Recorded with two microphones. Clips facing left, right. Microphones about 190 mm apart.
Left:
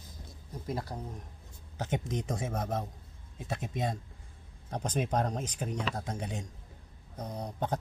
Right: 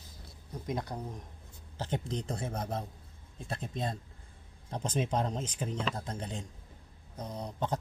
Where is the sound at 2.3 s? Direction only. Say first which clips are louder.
Left 2 dB; 90° left.